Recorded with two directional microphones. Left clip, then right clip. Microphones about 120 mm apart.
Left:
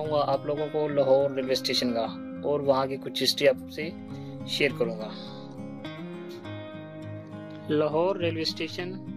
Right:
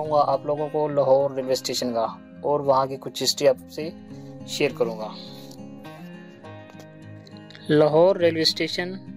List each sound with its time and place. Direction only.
0.0 s speech: centre (ahead or behind)
4.5 s speech: 20° right (ahead or behind)
7.6 s speech: 45° right (ahead or behind)